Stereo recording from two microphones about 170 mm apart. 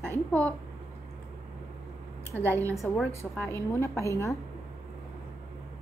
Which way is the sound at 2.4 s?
15° right (ahead or behind).